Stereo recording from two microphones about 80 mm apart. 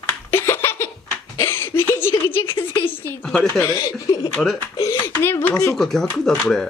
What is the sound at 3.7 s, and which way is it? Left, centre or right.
Speech, left.